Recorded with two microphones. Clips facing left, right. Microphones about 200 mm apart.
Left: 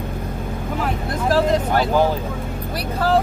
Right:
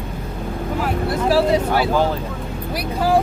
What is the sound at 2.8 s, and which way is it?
Speech, 10° right (ahead or behind).